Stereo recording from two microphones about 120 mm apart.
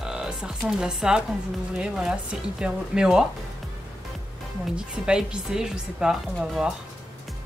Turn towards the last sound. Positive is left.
turn(degrees=-5)  # may be behind; listen again after turning